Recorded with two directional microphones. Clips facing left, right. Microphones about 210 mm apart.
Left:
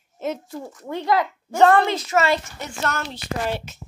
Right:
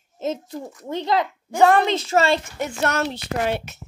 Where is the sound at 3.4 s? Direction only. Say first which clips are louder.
Right 2 dB; 65° right (ahead or behind).